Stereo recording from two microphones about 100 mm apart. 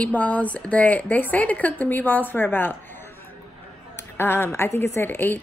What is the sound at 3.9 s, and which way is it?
A woman's voice, 20° left (ahead or behind).